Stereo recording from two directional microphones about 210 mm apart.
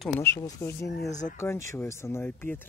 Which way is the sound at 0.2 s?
15° left (ahead or behind).